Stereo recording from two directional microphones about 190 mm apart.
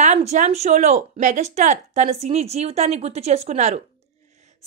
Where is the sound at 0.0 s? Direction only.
35° right (ahead or behind).